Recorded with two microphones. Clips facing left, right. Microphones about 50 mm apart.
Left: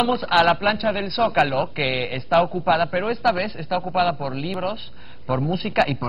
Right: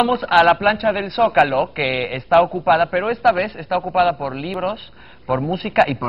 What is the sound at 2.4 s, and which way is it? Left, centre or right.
Speech, centre.